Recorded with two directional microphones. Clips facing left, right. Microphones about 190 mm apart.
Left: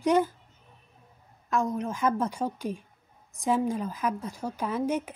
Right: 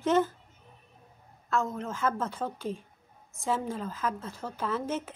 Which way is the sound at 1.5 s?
15° left (ahead or behind).